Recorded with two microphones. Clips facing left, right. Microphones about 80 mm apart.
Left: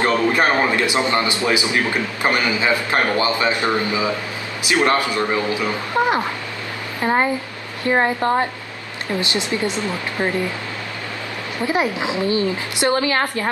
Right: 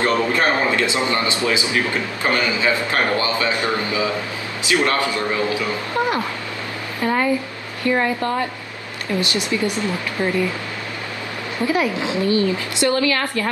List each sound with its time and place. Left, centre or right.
0.0 s a man's voice: centre
11.6 s a man's voice: left